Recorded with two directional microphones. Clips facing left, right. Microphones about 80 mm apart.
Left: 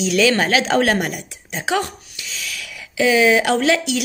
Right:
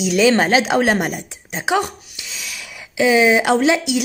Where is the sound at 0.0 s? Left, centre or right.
Right.